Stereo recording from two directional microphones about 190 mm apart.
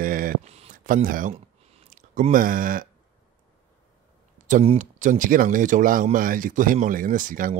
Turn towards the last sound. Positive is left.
turn(degrees=-45)  # may be behind; listen again after turning